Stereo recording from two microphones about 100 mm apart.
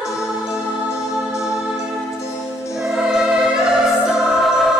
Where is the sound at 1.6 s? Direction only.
10° right (ahead or behind).